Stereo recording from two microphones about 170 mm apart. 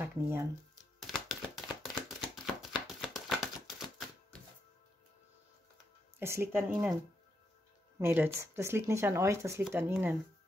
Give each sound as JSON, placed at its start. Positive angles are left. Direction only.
{"t": 0.0, "sound": "speech", "side_deg": -15}
{"t": 0.9, "sound": "chopping", "side_deg": 0}
{"t": 2.9, "sound": "typewriter", "side_deg": 0}
{"t": 6.1, "sound": "speech", "side_deg": -15}
{"t": 6.7, "sound": "speech", "side_deg": 0}
{"t": 8.0, "sound": "speech", "side_deg": -15}